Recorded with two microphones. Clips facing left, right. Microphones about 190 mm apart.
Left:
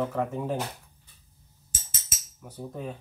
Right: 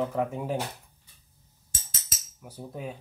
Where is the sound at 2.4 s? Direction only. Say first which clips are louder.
Left 1 dB; 10° right (ahead or behind).